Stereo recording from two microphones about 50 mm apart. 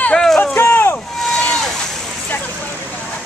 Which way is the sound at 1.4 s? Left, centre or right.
Centre.